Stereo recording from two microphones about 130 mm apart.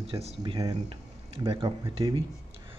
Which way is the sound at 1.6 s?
30° right (ahead or behind).